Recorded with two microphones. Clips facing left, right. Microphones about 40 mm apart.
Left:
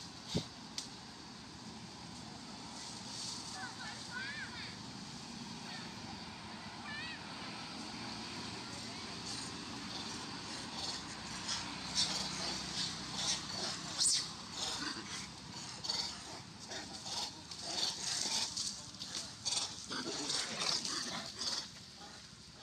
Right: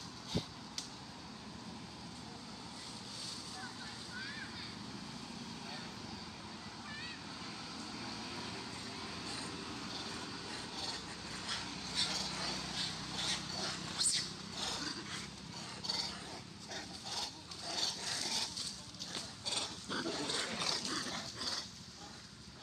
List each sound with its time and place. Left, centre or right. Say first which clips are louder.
7.4 s vehicle: even; centre
9.2 s vehicle: right 2 dB; centre
9.6 s vehicle: right 1 dB; centre
11.6 s vehicle: even; centre
14.6 s vehicle: right 1 dB; centre
16.7 s vehicle: even; centre
18.0 s dog: even; centre
19.1 s dog: right 1 dB; right
20.5 s dog: right 1 dB; centre
21.4 s a sound: right 1 dB; centre